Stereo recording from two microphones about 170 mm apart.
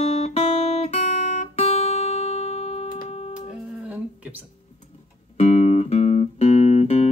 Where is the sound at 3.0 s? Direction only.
40° left (ahead or behind).